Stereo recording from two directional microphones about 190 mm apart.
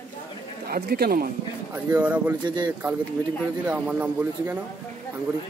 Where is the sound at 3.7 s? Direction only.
10° right (ahead or behind).